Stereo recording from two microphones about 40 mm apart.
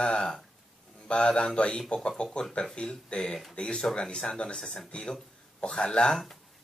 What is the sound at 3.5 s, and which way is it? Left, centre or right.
Speech, centre.